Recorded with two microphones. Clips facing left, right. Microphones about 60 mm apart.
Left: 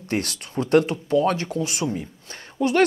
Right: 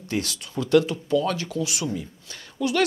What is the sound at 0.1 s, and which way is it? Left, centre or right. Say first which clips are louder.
Speech: left 2 dB; left.